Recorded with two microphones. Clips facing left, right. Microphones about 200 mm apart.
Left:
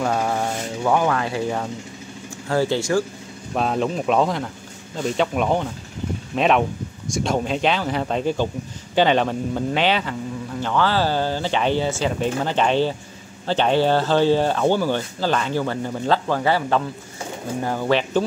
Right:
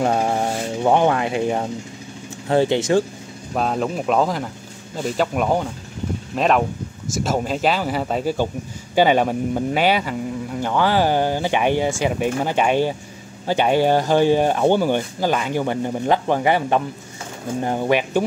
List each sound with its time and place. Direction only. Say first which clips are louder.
0.0 s speech: right 2 dB; 25° right (ahead or behind)
3.5 s speech: even; centre (ahead or behind)